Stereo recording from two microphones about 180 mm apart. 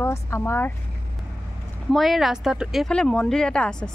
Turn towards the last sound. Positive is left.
turn(degrees=5)  # may be behind; listen again after turning